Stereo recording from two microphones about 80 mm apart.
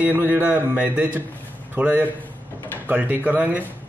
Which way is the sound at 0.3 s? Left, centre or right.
Centre.